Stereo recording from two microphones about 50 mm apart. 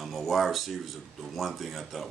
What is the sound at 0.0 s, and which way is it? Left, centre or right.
Speech, centre.